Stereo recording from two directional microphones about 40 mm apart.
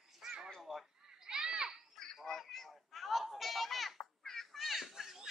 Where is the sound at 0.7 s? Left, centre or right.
Centre.